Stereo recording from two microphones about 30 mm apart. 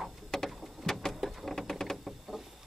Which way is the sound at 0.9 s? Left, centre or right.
Left.